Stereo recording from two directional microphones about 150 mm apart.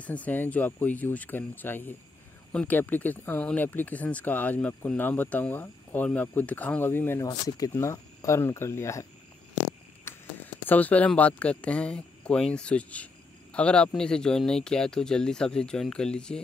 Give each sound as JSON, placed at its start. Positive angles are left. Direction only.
{"t": 0.0, "sound": "speech", "side_deg": 10}
{"t": 10.0, "sound": "speech", "side_deg": 10}